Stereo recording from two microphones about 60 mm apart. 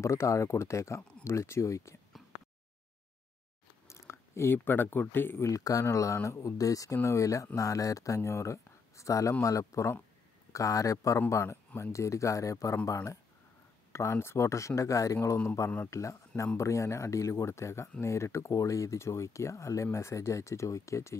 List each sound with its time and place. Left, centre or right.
0.0 s speech: left
3.8 s speech: left
5.4 s speech: left
5.9 s speech: left
7.0 s speech: left
10.5 s speech: left
11.1 s speech: left
13.9 s speech: left
14.8 s a man's voice: left